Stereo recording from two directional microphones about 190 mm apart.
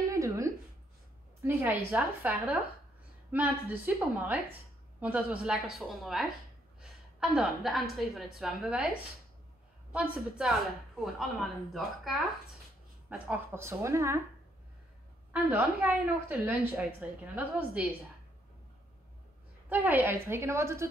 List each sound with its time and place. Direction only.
0.1 s a sound: 15° right (ahead or behind)
1.4 s a woman's voice: 10° right (ahead or behind)
9.9 s a woman's voice: 5° right (ahead or behind)
13.1 s a woman's voice: 10° right (ahead or behind)
15.3 s a woman's voice: 10° right (ahead or behind)
19.7 s a woman's voice: 10° right (ahead or behind)